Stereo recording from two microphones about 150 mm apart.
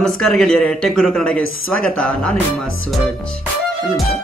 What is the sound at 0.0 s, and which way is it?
Speech, centre (ahead or behind).